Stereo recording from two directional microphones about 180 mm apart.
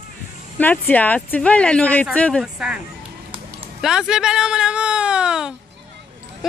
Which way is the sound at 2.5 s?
5° right (ahead or behind).